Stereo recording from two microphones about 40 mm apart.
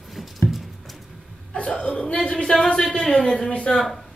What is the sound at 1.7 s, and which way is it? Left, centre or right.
Speech, left.